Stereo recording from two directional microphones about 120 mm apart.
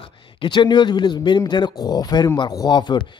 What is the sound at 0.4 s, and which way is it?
Speech, 40° left (ahead or behind).